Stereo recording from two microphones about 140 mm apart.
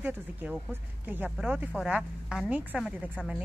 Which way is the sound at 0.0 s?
10° right (ahead or behind).